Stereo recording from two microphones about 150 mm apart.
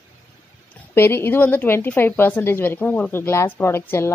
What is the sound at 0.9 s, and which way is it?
A woman's voice, 15° left (ahead or behind).